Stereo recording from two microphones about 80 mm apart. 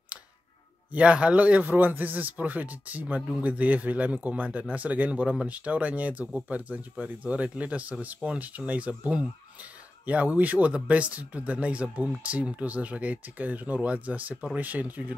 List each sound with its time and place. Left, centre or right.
0.9 s a man's voice: centre